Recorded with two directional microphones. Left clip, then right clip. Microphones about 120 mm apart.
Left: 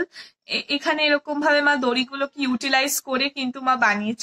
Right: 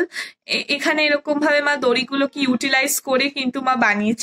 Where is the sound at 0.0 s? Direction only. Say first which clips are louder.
Right 6 dB; 35° right (ahead or behind).